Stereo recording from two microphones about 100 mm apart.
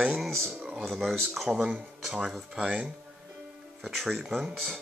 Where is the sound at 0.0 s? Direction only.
5° right (ahead or behind).